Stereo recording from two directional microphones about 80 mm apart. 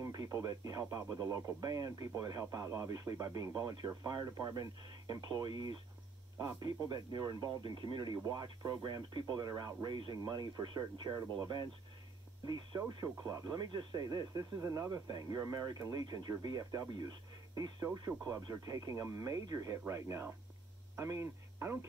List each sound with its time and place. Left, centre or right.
0.0 s speech: right
5.0 s speech: right
6.3 s speech: right
7.6 s speech: right
13.0 s speech: right